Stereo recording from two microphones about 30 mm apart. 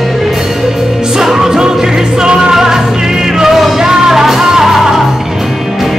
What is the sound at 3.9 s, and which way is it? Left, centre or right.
Music, right.